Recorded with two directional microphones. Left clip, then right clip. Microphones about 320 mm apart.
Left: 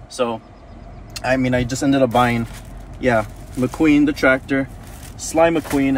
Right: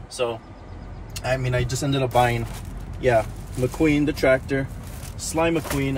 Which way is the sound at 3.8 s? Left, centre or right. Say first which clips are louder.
Left 6 dB; left.